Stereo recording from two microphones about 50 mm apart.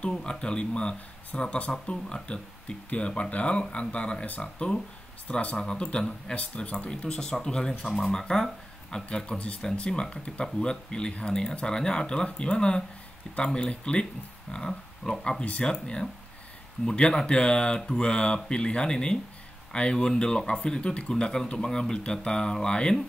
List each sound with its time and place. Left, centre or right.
0.2 s speech: centre